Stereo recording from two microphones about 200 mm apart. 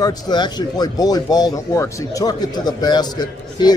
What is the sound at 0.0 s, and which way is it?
Speech, 20° left (ahead or behind).